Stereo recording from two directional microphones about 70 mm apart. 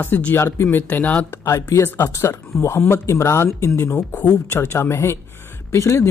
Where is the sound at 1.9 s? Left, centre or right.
Left.